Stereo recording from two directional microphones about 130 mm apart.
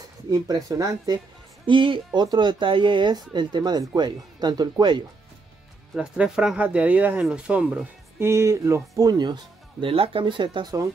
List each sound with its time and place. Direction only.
0.3 s speech: 25° right (ahead or behind)
1.7 s speech: 40° right (ahead or behind)
5.9 s speech: 5° right (ahead or behind); by 10.7 s 40° right (ahead or behind)